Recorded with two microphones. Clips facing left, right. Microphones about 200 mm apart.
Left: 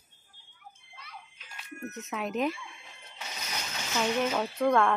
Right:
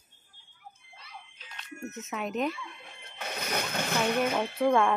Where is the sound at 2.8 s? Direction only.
55° right (ahead or behind).